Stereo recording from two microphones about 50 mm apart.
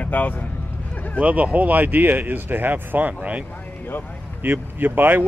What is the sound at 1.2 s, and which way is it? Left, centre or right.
Speech, right.